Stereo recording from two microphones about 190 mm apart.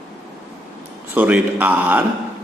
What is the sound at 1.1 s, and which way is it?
Speech, 10° right (ahead or behind).